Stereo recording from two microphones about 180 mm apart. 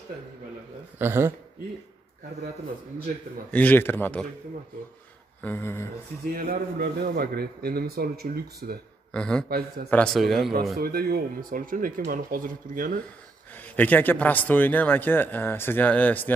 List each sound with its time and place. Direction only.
0.9 s speech: 10° right (ahead or behind)
3.5 s a man's voice: 10° left (ahead or behind)
5.4 s a man's voice: 10° left (ahead or behind)
6.3 s speech: 60° right (ahead or behind)
9.1 s a man's voice: 5° left (ahead or behind)
10.8 s speech: 55° right (ahead or behind)
13.6 s a man's voice: 10° left (ahead or behind)